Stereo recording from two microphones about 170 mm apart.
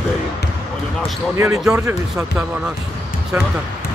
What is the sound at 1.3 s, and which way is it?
Speech, 15° right (ahead or behind).